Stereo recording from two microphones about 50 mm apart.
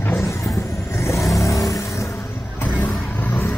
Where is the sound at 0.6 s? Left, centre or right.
Left.